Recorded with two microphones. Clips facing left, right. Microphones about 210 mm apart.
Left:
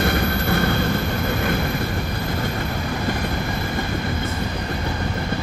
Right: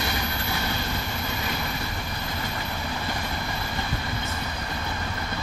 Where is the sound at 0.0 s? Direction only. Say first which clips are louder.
Left 9 dB; 55° left (ahead or behind).